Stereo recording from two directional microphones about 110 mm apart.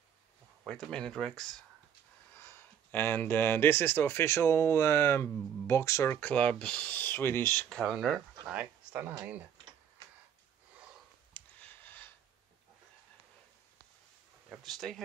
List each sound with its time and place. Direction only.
0.7 s speech: 5° left (ahead or behind)
2.3 s speech: 20° left (ahead or behind)
6.1 s speech: 10° left (ahead or behind)
7.5 s speech: 5° left (ahead or behind); by 9.1 s 10° right (ahead or behind)
11.3 s a sound: 15° left (ahead or behind)
14.5 s speech: centre (ahead or behind)